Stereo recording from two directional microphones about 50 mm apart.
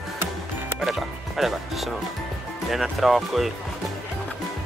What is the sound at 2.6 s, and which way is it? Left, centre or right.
Speech, centre.